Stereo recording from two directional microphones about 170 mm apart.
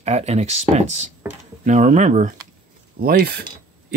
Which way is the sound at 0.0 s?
40° right (ahead or behind).